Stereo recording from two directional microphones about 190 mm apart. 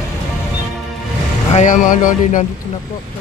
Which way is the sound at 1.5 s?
40° left (ahead or behind).